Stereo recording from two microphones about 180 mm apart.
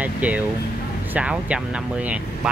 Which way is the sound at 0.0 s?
10° right (ahead or behind).